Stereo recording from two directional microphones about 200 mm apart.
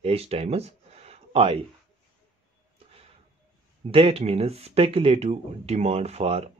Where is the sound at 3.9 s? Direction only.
30° right (ahead or behind).